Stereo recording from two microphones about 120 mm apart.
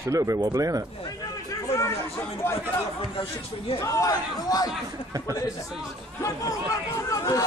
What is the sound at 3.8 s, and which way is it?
Speech, 30° left (ahead or behind).